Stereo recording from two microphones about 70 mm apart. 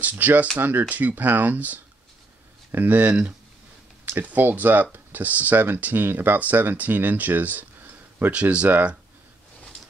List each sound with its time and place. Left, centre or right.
0.0 s speech: right